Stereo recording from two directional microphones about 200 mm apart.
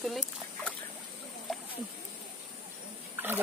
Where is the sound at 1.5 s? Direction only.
Centre (ahead or behind).